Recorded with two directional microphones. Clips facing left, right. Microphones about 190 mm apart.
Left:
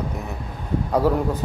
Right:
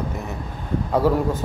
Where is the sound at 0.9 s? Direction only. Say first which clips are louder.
Right 1 dB; centre (ahead or behind).